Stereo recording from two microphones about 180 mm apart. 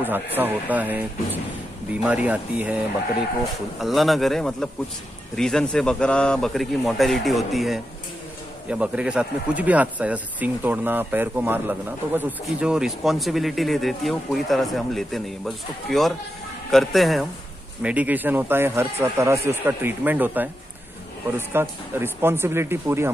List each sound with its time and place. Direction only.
0.0 s speech: 10° right (ahead or behind)
3.8 s speech: centre (ahead or behind)